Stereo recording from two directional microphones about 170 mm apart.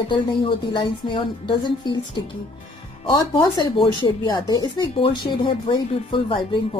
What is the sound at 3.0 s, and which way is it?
Speech, 30° left (ahead or behind).